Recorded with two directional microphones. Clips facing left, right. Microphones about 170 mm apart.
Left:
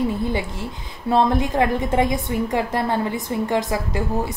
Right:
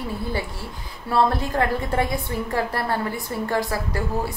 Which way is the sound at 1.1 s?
20° left (ahead or behind).